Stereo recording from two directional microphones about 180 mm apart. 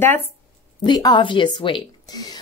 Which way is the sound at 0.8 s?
25° left (ahead or behind).